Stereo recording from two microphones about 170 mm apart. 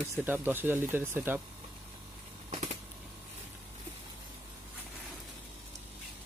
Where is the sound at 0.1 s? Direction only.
10° right (ahead or behind).